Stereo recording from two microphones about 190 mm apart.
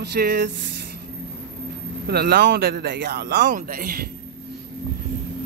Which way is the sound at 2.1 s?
55° right (ahead or behind).